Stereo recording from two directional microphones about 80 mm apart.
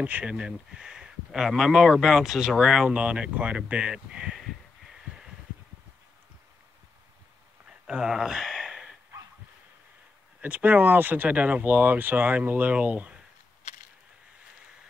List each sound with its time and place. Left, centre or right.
0.0 s speech: centre
7.6 s a sound: centre
10.4 s speech: centre